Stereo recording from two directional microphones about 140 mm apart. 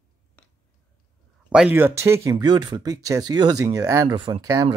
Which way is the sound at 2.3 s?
30° right (ahead or behind).